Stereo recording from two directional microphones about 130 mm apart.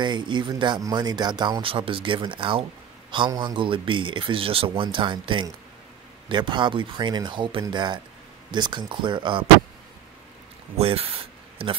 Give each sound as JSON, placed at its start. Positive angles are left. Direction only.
{"t": 0.0, "sound": "speech", "side_deg": -35}
{"t": 10.8, "sound": "speech", "side_deg": -50}